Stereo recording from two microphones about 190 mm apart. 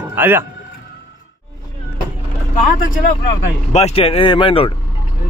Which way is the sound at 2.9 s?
45° left (ahead or behind).